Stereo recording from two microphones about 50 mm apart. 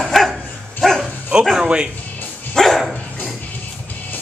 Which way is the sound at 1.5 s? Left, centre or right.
Centre.